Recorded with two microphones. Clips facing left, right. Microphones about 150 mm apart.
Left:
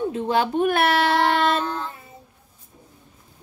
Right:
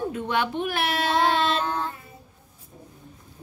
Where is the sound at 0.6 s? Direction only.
60° left (ahead or behind).